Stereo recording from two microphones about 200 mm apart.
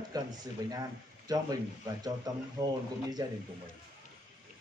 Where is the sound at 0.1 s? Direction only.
20° right (ahead or behind).